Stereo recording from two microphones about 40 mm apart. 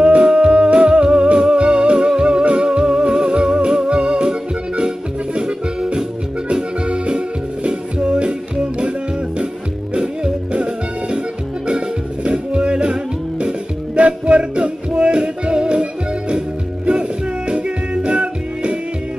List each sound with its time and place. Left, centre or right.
0.0 s music: right
9.9 s music: right
13.9 s music: right